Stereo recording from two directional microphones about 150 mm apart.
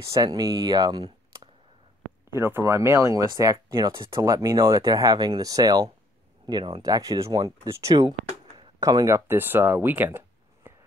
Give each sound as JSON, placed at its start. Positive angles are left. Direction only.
{"t": 0.0, "sound": "speech", "side_deg": -25}
{"t": 2.3, "sound": "speech", "side_deg": -15}